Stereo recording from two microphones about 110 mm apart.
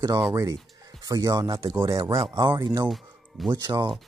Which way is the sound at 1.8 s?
40° right (ahead or behind).